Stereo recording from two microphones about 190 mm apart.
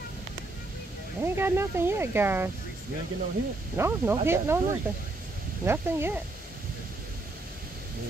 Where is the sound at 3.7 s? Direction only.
10° right (ahead or behind).